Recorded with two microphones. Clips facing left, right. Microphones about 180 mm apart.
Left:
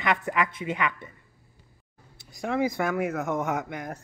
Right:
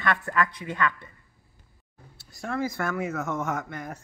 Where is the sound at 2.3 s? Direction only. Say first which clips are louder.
Left 3 dB; 15° left (ahead or behind).